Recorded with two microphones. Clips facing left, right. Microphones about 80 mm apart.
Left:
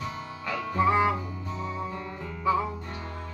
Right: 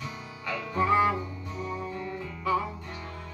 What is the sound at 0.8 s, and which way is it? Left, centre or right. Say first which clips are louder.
Music: even; left.